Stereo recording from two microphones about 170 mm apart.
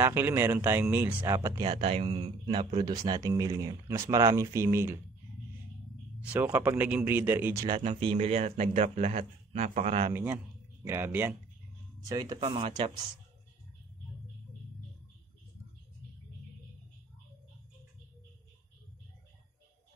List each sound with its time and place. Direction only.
0.0 s speech: 15° right (ahead or behind)
1.6 s speech: 35° right (ahead or behind); by 4.9 s 15° right (ahead or behind)
6.2 s speech: 10° right (ahead or behind)
7.6 s a man's voice: 35° right (ahead or behind)
10.1 s speech: 10° right (ahead or behind); by 13.0 s 30° right (ahead or behind)